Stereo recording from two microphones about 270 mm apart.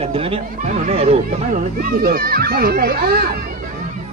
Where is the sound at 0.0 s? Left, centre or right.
Right.